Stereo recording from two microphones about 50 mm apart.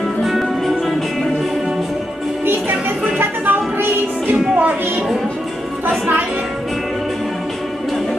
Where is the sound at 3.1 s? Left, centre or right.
Right.